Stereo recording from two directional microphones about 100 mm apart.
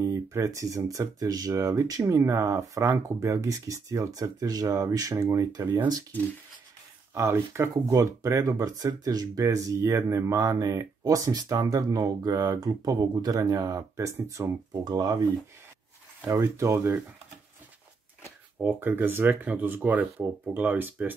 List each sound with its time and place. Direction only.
0.0 s speech: 35° right (ahead or behind)
7.2 s speech: 30° right (ahead or behind)
16.3 s speech: 35° right (ahead or behind)
18.8 s speech: 20° right (ahead or behind)